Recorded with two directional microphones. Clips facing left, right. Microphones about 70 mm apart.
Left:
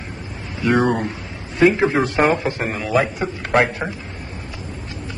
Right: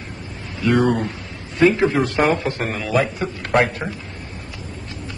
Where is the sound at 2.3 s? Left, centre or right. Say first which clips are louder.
Left 1 dB; centre.